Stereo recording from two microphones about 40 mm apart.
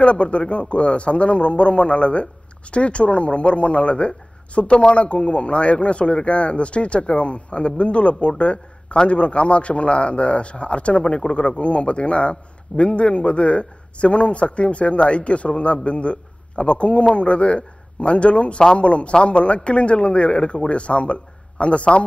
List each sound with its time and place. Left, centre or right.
0.0 s a man's voice: left